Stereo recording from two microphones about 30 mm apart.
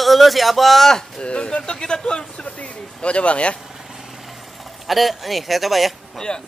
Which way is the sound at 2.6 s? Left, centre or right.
Left.